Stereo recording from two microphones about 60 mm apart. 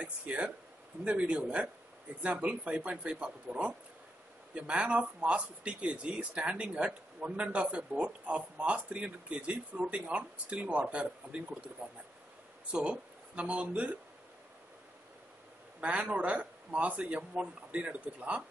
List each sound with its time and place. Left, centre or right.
0.0 s speech: right
15.8 s speech: right